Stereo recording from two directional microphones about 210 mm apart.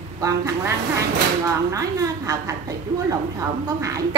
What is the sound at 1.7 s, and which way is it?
A woman's voice, 15° right (ahead or behind).